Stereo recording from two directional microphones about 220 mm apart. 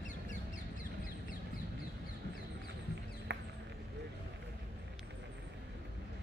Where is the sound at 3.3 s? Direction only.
50° right (ahead or behind).